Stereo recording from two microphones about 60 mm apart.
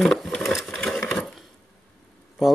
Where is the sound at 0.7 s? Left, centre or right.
Centre.